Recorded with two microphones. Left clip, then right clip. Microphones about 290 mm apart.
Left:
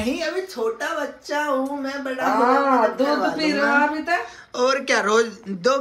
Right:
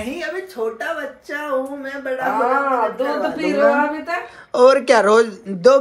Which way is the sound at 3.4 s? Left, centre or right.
Centre.